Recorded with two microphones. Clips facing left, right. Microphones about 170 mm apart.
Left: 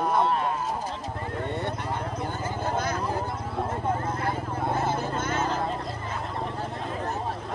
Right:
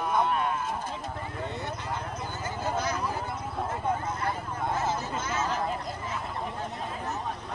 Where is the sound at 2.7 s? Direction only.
55° left (ahead or behind).